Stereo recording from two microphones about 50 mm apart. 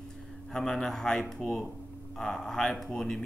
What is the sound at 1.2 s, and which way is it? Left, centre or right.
Speech, left.